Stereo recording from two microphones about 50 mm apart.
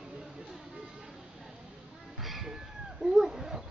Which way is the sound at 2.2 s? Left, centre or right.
Centre.